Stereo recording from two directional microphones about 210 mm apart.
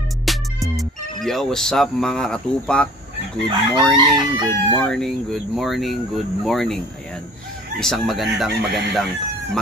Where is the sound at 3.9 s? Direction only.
20° right (ahead or behind).